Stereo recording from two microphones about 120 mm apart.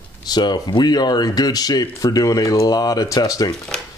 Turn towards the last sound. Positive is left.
turn(degrees=30)  # may be behind; listen again after turning